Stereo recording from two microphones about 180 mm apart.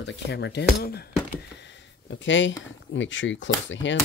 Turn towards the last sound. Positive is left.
turn(degrees=90)